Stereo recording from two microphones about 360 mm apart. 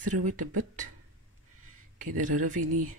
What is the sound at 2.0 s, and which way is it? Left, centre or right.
Speech, right.